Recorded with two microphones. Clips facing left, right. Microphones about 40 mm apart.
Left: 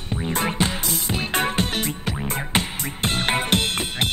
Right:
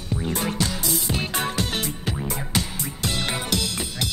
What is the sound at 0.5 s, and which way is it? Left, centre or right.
Music, left.